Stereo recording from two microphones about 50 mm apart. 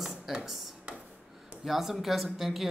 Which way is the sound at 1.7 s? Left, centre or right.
Centre.